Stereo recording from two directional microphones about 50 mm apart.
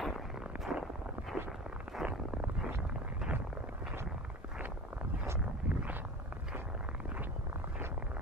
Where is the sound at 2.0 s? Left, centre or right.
Centre.